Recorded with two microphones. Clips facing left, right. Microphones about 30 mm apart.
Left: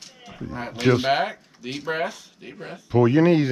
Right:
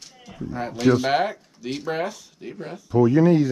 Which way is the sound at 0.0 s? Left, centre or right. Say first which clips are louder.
Right 1 dB; centre.